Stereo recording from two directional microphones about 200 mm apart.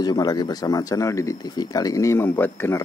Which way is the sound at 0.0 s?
20° left (ahead or behind).